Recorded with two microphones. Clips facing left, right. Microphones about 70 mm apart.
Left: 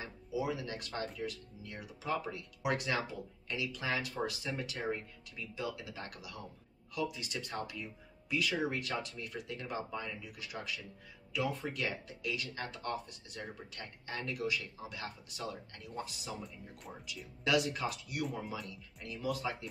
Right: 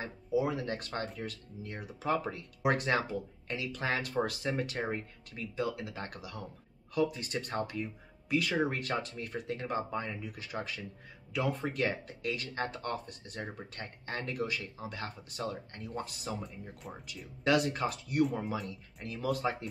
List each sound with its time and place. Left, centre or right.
0.0 s speech: right